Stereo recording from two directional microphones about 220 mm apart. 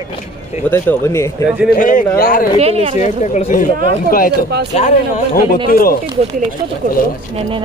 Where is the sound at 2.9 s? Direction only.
30° left (ahead or behind).